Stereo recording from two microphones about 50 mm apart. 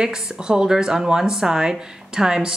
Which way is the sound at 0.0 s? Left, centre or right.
Centre.